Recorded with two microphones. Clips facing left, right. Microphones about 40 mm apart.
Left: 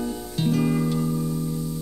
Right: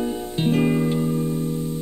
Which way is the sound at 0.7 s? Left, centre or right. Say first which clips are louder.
Right 3 dB; right.